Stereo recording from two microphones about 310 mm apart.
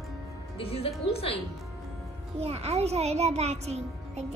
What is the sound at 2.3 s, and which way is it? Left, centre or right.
Music, centre.